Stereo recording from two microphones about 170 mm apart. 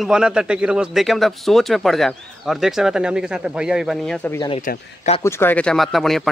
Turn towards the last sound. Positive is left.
turn(degrees=0)  # may be behind; listen again after turning